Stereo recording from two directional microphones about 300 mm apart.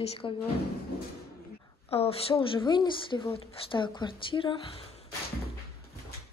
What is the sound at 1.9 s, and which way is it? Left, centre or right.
A woman's voice, centre.